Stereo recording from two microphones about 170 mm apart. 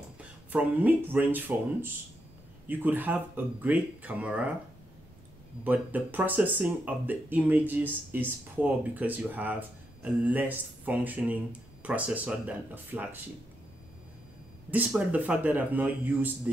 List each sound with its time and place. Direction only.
0.2 s speech: 10° right (ahead or behind)
5.6 s speech: 10° right (ahead or behind)
14.7 s speech: 10° right (ahead or behind)